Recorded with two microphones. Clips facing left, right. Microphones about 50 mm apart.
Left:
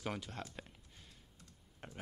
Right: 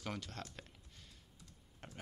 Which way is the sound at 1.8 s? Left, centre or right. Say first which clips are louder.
Left 2 dB; centre.